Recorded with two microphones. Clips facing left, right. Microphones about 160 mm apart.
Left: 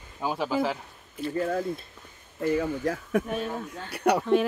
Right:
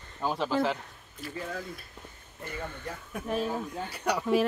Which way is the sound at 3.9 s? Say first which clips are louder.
Left 8 dB; 60° left (ahead or behind).